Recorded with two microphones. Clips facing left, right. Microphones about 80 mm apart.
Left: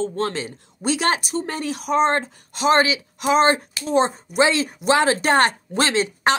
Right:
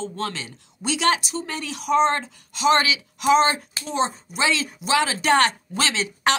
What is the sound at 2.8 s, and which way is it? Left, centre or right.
Speech, left.